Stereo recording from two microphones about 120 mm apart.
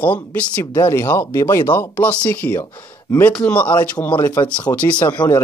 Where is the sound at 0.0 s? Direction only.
15° left (ahead or behind).